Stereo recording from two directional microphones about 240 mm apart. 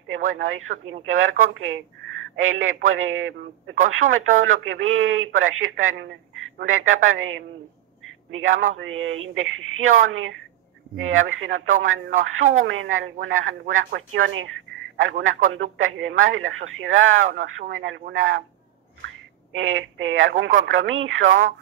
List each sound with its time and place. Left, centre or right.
0.2 s speech: right
2.3 s speech: right
19.5 s speech: right